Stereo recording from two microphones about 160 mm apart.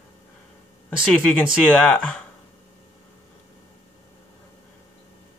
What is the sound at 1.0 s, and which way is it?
Speech, 5° right (ahead or behind).